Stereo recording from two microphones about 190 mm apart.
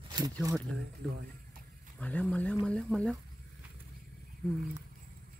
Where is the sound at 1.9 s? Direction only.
5° left (ahead or behind).